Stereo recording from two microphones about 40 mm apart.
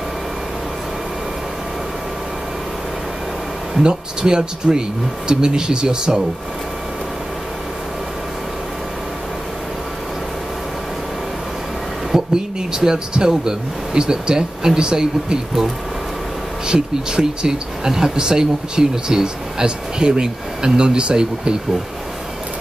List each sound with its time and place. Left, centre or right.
3.8 s speech: centre
12.1 s a sound: centre
12.7 s speech: centre